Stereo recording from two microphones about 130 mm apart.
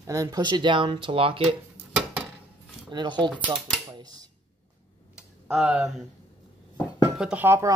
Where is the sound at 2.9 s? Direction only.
35° right (ahead or behind).